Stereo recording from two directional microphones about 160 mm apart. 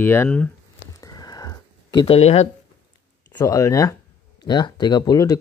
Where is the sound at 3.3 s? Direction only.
20° left (ahead or behind).